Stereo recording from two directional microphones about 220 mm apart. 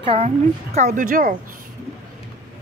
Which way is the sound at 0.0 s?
25° right (ahead or behind).